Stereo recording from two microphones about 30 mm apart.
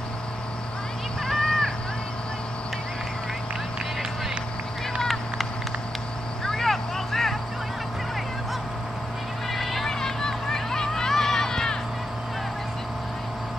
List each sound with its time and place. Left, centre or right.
1.2 s vehicle: centre
6.4 s vehicle: centre
9.5 s vehicle: centre
9.8 s vehicle: centre